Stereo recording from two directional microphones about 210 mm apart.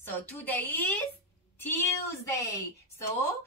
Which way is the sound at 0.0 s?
10° left (ahead or behind).